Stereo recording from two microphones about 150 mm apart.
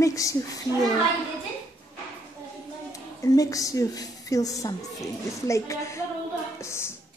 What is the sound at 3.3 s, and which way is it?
Speech, 20° left (ahead or behind).